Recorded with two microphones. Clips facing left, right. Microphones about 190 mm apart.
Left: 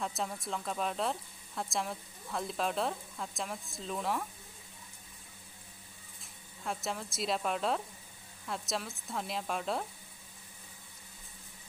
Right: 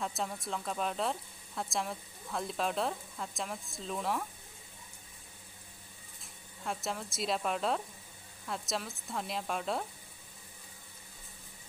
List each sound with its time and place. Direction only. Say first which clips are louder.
0.0 s speech: even; centre (ahead or behind)
6.6 s speech: even; centre (ahead or behind)